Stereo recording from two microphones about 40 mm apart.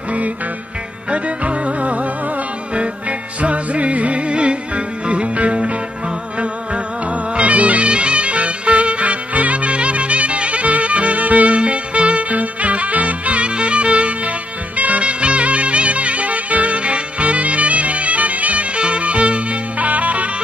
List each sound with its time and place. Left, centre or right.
1.1 s music: right